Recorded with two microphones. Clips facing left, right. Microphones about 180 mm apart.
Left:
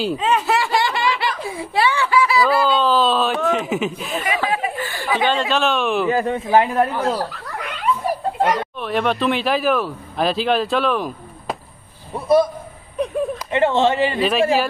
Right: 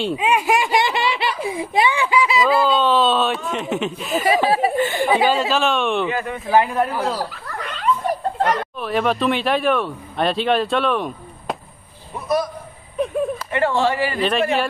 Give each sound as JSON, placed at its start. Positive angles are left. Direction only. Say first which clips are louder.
{"t": 0.0, "sound": "speech", "louder": "even", "side_deg": -10}
{"t": 2.8, "sound": "speech", "louder": "even", "side_deg": 0}
{"t": 4.5, "sound": "speech", "louder": "right 5 dB", "side_deg": -35}
{"t": 4.8, "sound": "speech", "louder": "right 5 dB", "side_deg": -20}
{"t": 5.2, "sound": "speech", "louder": "right 1 dB", "side_deg": -5}
{"t": 6.0, "sound": "a man's voice", "louder": "left 5 dB", "side_deg": 35}
{"t": 6.7, "sound": "speech", "louder": "left 2 dB", "side_deg": -5}
{"t": 7.2, "sound": "speech", "louder": "left 1 dB", "side_deg": 10}
{"t": 12.9, "sound": "a sound", "louder": "even", "side_deg": 0}
{"t": 13.5, "sound": "a man's voice", "louder": "left 4 dB", "side_deg": 20}